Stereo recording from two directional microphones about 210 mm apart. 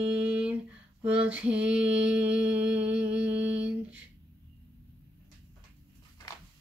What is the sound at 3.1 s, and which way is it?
Speech, 5° right (ahead or behind).